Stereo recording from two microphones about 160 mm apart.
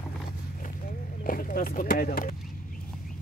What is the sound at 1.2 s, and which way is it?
Speech, 60° left (ahead or behind).